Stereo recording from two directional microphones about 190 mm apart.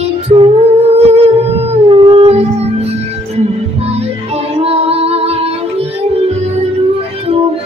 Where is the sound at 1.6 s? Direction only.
30° right (ahead or behind).